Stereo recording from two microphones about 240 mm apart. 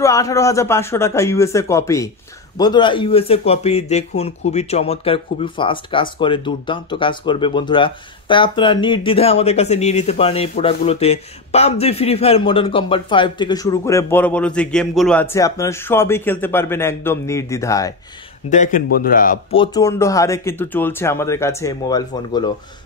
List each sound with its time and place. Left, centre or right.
0.0 s speech: centre
18.5 s speech: left
19.5 s speech: centre